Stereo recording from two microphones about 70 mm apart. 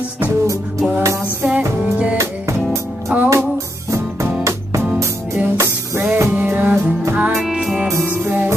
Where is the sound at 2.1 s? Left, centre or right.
Right.